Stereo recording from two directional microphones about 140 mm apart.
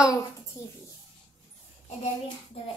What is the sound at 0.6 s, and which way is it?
Speech, 20° left (ahead or behind).